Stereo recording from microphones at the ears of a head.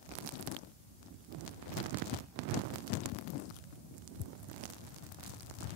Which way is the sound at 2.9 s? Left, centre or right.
Left.